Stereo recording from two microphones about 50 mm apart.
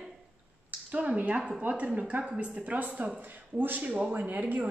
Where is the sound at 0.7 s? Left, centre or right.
Right.